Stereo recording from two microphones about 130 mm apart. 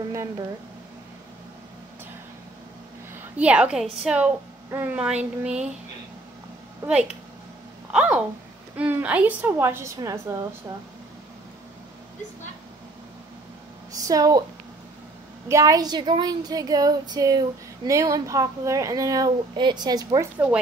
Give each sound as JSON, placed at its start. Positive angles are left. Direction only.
{"t": 3.3, "sound": "a woman's voice", "side_deg": -10}
{"t": 6.9, "sound": "a woman's voice", "side_deg": -10}
{"t": 13.9, "sound": "speech", "side_deg": -25}
{"t": 15.4, "sound": "speech", "side_deg": -25}